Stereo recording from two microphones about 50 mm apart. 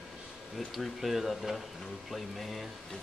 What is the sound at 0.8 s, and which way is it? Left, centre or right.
Speech, centre.